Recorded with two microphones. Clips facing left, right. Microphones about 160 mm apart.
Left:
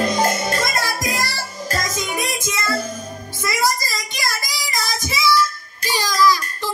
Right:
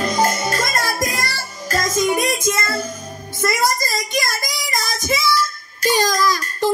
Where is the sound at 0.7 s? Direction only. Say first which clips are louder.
Right 1 dB; 50° right (ahead or behind).